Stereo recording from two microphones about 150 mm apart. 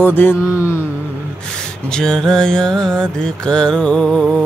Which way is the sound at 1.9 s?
5° left (ahead or behind).